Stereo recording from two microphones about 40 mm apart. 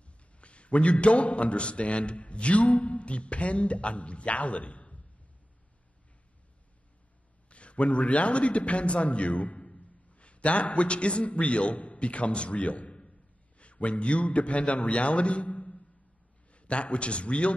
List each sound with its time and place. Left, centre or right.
0.0 s a man's voice: left
7.4 s a man's voice: left